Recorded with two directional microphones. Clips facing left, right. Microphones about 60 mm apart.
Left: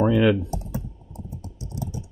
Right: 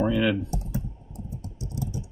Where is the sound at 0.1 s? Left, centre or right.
Left.